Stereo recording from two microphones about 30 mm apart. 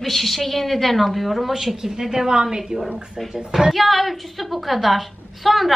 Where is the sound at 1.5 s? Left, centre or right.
Centre.